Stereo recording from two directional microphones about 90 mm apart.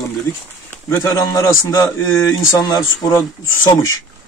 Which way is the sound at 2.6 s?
40° left (ahead or behind).